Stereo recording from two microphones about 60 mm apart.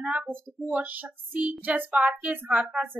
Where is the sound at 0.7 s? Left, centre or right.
Right.